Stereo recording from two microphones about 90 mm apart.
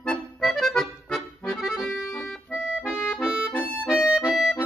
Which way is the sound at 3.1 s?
5° left (ahead or behind).